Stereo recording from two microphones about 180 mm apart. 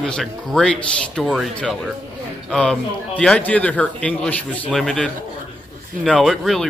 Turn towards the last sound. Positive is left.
turn(degrees=0)  # may be behind; listen again after turning